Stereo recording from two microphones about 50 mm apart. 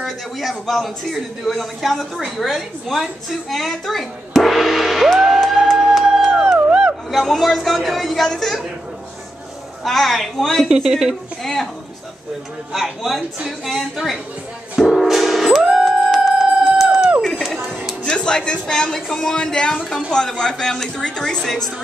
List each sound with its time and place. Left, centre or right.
0.0 s a man's voice: centre
9.8 s a man's voice: centre
10.7 s speech: centre
12.7 s a man's voice: centre
14.8 s music: centre
18.0 s speech: centre